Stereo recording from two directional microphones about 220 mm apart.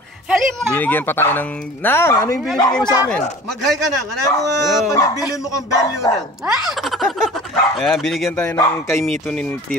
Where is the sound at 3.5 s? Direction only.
Centre (ahead or behind).